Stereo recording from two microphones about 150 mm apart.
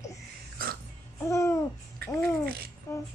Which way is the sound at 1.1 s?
20° left (ahead or behind).